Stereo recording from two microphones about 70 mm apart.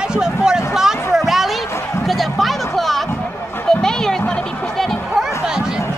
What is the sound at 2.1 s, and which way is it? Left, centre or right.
Music, centre.